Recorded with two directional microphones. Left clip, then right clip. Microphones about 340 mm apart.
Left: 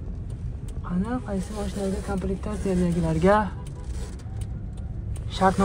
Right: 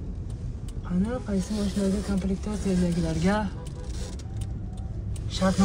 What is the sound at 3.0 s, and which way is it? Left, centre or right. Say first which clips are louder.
Speech: left 10 dB; left.